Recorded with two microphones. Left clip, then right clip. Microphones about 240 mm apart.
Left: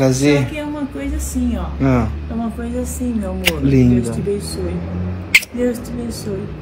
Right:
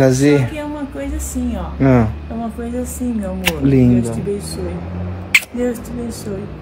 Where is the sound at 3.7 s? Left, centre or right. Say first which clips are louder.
Right 2 dB; right.